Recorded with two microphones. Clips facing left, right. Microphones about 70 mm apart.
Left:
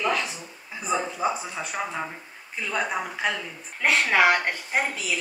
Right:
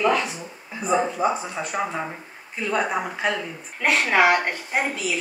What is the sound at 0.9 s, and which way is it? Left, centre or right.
Speech, right.